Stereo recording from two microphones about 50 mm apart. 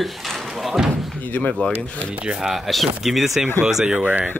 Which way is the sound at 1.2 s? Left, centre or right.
Left.